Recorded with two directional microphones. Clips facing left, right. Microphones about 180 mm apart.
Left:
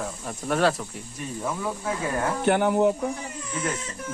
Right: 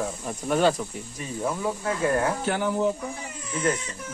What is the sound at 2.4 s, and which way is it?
Speech, 60° left (ahead or behind).